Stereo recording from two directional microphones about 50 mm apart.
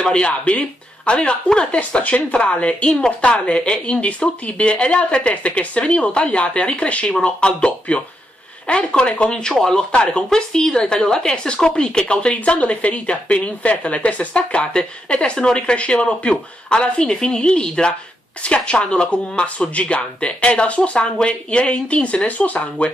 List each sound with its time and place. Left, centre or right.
0.0 s a woman's voice: centre
9.5 s a woman's voice: centre; by 22.8 s left